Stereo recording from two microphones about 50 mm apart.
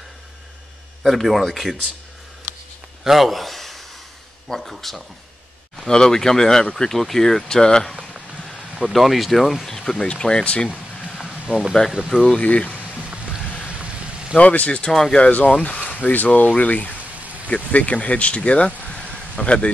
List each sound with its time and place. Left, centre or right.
1.0 s speech: centre
3.0 s gasp: centre
4.5 s speech: centre
8.7 s speech: centre
11.1 s a sound: centre
12.3 s speech: left
14.3 s speech: left
14.9 s speech: centre
15.1 s speech: left
18.8 s a sound: left